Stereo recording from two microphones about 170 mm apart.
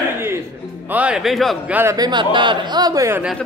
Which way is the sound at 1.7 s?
20° right (ahead or behind).